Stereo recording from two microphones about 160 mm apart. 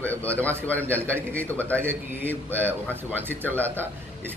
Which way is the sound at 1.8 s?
15° right (ahead or behind).